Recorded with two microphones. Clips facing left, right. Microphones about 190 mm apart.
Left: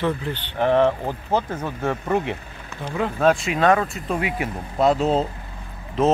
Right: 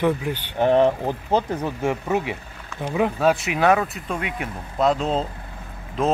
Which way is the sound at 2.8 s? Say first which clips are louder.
Right 3 dB; 15° right (ahead or behind).